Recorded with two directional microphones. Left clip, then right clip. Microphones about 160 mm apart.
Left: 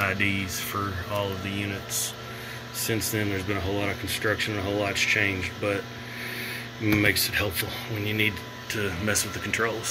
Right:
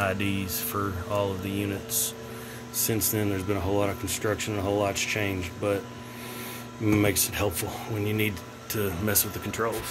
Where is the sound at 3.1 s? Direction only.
20° right (ahead or behind).